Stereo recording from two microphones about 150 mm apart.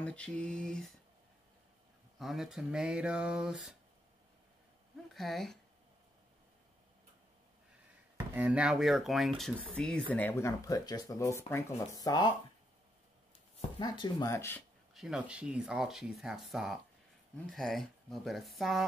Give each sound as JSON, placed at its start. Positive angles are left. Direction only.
{"t": 0.0, "sound": "speech", "side_deg": 10}
{"t": 2.1, "sound": "speech", "side_deg": -5}
{"t": 5.1, "sound": "speech", "side_deg": 0}
{"t": 8.4, "sound": "speech", "side_deg": -10}
{"t": 13.7, "sound": "speech", "side_deg": 30}
{"t": 15.0, "sound": "speech", "side_deg": -5}